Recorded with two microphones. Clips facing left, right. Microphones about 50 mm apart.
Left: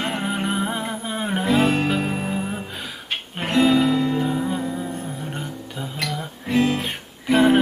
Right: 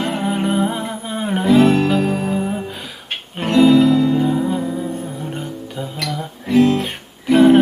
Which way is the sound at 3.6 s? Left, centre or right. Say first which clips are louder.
Right 6 dB; centre.